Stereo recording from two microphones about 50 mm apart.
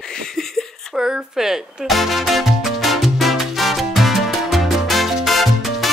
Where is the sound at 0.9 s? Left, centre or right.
Centre.